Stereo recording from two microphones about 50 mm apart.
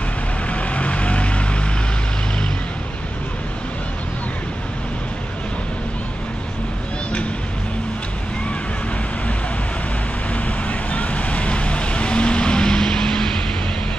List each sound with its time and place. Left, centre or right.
0.5 s vehicle: left
10.3 s vehicle: left; by 13.4 s centre